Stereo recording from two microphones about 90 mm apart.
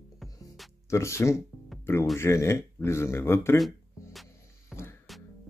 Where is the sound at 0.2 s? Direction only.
Centre (ahead or behind).